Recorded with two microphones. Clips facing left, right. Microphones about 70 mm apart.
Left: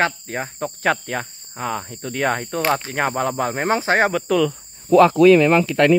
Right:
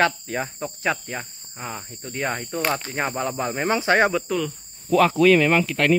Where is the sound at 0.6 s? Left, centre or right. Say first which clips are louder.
Left 5 dB; left.